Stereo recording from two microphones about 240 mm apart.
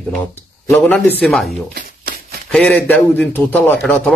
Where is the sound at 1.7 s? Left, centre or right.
Right.